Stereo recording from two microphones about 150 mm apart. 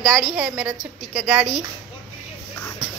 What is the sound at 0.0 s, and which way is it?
A woman's voice, 5° right (ahead or behind).